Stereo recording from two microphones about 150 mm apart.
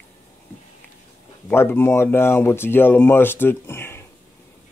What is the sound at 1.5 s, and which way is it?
Speech, 15° left (ahead or behind).